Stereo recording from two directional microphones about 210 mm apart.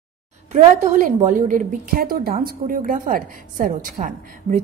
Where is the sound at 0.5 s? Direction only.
35° right (ahead or behind).